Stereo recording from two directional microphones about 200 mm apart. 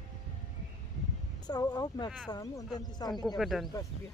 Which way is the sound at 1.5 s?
20° left (ahead or behind).